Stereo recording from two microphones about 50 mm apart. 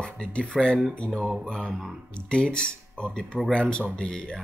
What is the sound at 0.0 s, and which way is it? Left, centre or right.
Speech, centre.